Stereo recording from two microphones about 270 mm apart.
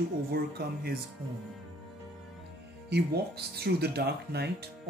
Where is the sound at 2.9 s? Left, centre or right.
Right.